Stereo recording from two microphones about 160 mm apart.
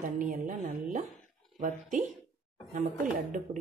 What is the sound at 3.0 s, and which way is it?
Speech, 50° right (ahead or behind).